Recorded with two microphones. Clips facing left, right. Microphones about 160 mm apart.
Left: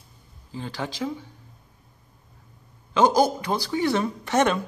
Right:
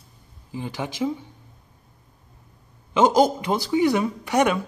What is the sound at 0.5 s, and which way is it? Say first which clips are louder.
Speech: right 2 dB; 15° right (ahead or behind).